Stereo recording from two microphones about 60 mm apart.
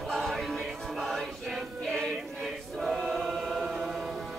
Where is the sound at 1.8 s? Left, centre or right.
Centre.